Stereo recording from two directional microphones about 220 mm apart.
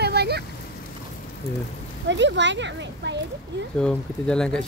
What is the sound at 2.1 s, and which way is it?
Speech, 55° right (ahead or behind).